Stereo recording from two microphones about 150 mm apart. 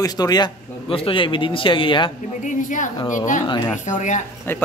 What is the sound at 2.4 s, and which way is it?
A woman's voice, 60° left (ahead or behind).